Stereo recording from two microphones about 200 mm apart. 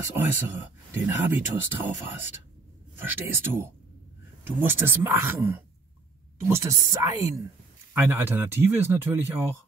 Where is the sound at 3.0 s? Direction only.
10° right (ahead or behind).